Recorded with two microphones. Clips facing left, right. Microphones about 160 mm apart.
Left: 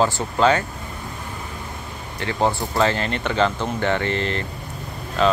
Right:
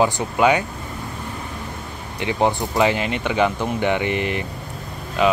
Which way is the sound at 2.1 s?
15° right (ahead or behind).